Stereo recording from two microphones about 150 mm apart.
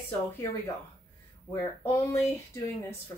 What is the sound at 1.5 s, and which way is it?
A woman's voice, 15° left (ahead or behind).